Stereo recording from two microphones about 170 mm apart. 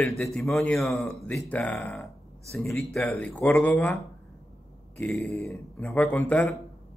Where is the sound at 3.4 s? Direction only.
15° left (ahead or behind).